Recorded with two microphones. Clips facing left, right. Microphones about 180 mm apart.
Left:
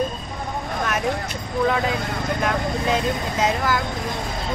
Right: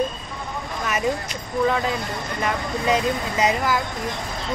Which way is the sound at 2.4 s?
5° left (ahead or behind).